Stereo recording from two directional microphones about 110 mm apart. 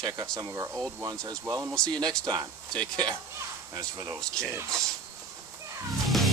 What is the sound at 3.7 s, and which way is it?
Speech, 30° right (ahead or behind).